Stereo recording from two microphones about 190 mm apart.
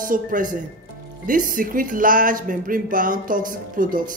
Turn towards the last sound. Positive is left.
turn(degrees=-45)  # may be behind; listen again after turning